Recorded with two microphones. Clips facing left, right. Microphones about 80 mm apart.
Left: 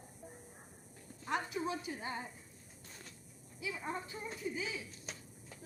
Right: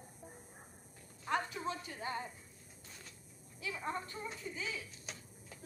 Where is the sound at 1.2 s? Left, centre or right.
Centre.